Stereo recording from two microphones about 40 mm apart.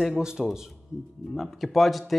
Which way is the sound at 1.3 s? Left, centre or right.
Centre.